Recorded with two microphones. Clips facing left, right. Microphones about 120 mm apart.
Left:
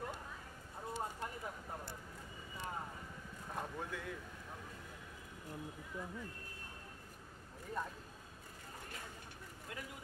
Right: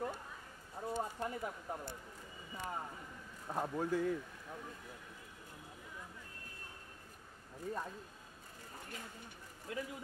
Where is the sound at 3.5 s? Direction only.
35° right (ahead or behind).